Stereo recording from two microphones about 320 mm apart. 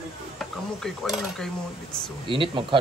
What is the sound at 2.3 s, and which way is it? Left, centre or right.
Speech, centre.